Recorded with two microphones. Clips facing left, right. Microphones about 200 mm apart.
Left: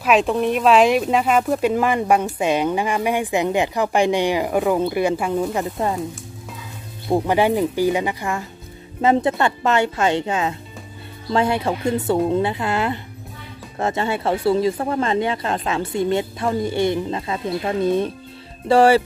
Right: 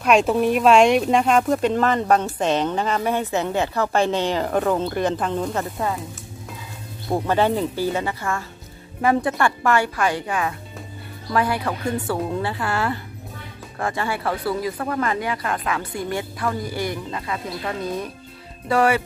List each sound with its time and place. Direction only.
0.0 s speech: centre (ahead or behind)
7.1 s speech: 15° left (ahead or behind); by 19.0 s 30° left (ahead or behind)